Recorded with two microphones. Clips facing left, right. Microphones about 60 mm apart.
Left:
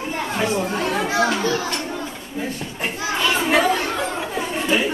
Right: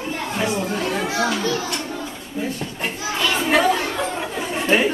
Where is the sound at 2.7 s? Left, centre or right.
Centre.